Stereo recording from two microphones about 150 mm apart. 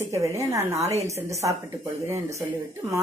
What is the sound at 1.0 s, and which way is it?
Speech, 20° right (ahead or behind).